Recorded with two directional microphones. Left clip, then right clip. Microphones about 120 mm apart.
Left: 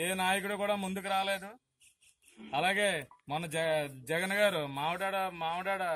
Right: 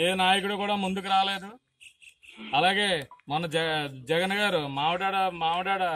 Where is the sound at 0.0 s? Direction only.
15° left (ahead or behind).